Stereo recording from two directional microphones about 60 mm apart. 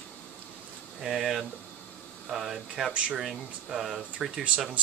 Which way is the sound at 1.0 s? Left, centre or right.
Centre.